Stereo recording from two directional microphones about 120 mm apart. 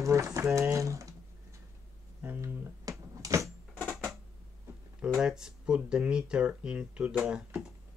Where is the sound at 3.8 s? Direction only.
Centre (ahead or behind).